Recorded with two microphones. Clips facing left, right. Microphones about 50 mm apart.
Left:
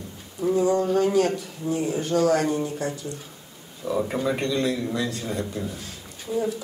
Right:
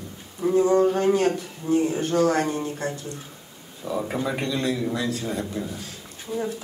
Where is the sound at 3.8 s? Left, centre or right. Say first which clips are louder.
Left 2 dB; centre.